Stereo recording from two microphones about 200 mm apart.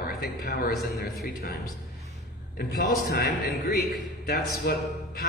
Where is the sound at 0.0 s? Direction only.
45° left (ahead or behind).